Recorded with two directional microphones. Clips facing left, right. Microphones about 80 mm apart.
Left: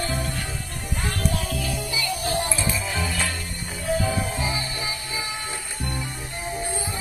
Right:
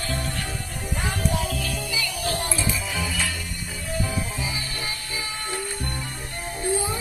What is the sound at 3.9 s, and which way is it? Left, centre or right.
Music, left.